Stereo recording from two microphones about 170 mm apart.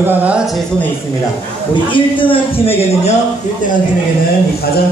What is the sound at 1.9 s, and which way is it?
Speech, 30° left (ahead or behind).